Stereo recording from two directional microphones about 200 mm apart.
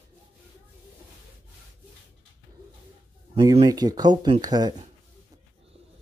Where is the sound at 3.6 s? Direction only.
20° right (ahead or behind).